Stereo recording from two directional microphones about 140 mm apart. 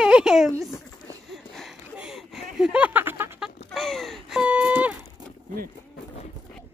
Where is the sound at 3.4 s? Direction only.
Centre (ahead or behind).